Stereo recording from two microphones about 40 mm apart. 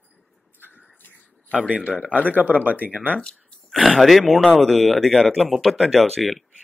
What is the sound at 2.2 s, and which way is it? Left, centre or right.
Speech, right.